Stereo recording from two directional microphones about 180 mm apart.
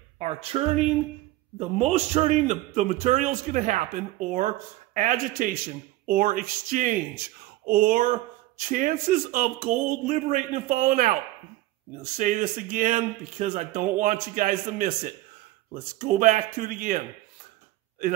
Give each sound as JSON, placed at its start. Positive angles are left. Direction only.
{"t": 0.2, "sound": "a man's voice", "side_deg": -35}
{"t": 6.0, "sound": "speech", "side_deg": -55}
{"t": 12.2, "sound": "speech", "side_deg": -45}